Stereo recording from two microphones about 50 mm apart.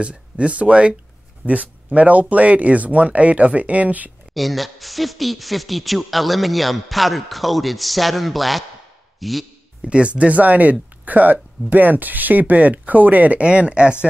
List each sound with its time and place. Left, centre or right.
0.0 s speech: right
4.3 s speech: centre
9.8 s speech: right